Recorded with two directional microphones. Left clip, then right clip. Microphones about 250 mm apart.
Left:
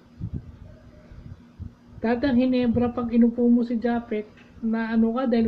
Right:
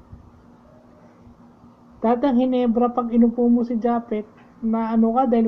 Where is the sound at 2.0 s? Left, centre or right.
Centre.